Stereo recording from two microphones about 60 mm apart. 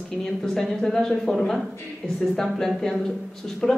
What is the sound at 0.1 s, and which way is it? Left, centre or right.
Speech, centre.